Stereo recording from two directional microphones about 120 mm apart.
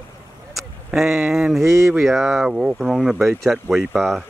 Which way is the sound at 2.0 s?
Centre (ahead or behind).